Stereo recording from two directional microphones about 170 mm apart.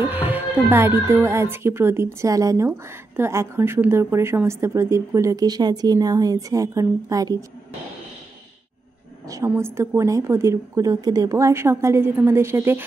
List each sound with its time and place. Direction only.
0.0 s a woman's voice: 10° right (ahead or behind)
9.3 s a woman's voice: 15° right (ahead or behind)